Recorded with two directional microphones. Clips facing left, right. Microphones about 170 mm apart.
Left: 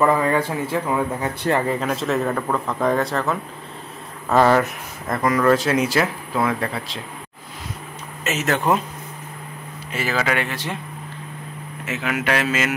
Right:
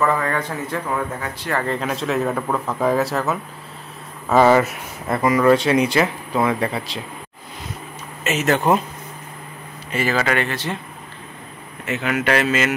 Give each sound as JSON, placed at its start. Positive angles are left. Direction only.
{"t": 0.0, "sound": "a man's voice", "side_deg": 10}
{"t": 1.8, "sound": "speech", "side_deg": 0}
{"t": 8.2, "sound": "speech", "side_deg": 0}
{"t": 9.9, "sound": "speech", "side_deg": 5}
{"t": 11.8, "sound": "speech", "side_deg": 5}